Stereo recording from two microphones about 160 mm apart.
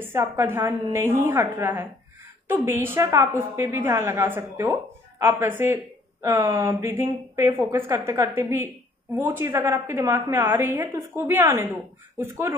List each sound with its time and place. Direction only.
0.0 s a woman's voice: 15° right (ahead or behind)